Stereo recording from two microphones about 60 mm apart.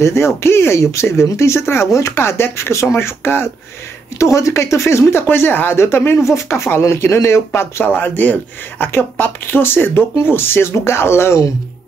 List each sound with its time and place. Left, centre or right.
0.0 s speech: left
4.2 s speech: left
7.8 s speech: left